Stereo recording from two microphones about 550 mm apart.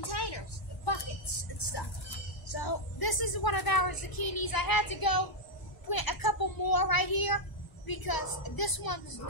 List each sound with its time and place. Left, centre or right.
0.0 s vehicle: left
2.4 s a sound: left
5.9 s a child's voice: left